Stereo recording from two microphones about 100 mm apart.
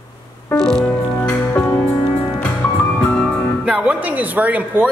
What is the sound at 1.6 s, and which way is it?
Music, 25° left (ahead or behind).